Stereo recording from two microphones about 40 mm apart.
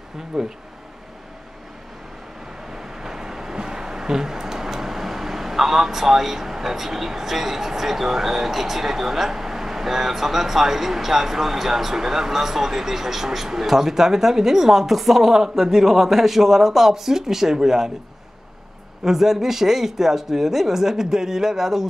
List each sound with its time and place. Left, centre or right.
0.3 s speech: centre
2.7 s speech: centre
19.0 s speech: centre